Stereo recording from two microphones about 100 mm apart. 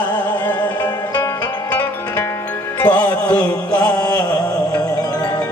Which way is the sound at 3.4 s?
40° left (ahead or behind).